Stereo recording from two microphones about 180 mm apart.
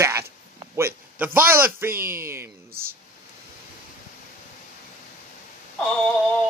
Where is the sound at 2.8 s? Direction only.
55° right (ahead or behind).